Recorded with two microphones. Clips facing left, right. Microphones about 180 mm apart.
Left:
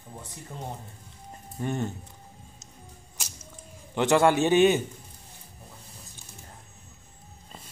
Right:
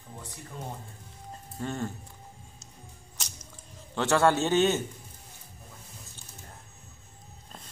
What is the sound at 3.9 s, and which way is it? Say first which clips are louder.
Speech: left 3 dB; 15° left (ahead or behind).